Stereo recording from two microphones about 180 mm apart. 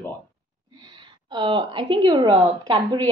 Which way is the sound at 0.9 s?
25° right (ahead or behind).